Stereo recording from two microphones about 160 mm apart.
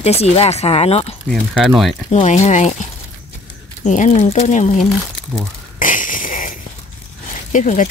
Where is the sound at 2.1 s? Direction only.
45° left (ahead or behind).